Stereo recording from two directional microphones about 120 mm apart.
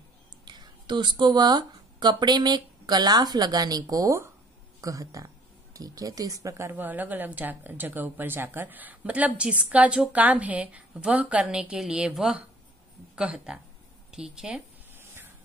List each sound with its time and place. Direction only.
0.5 s speech: 40° right (ahead or behind); by 14.6 s 5° right (ahead or behind)